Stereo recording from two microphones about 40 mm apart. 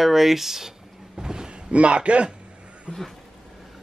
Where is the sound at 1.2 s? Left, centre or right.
Centre.